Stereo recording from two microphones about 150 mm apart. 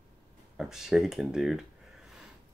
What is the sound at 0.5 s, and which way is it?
Speech, 5° right (ahead or behind).